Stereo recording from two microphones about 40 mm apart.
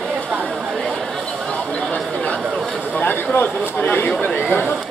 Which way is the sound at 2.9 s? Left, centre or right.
Left.